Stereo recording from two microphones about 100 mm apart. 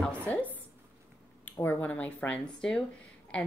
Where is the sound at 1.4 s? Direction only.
20° left (ahead or behind).